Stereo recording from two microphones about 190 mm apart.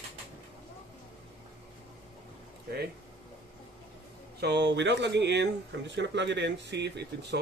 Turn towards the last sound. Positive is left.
turn(degrees=-65)  # may be behind; listen again after turning